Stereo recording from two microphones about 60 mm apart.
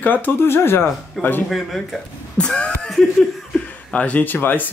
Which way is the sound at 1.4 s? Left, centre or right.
Centre.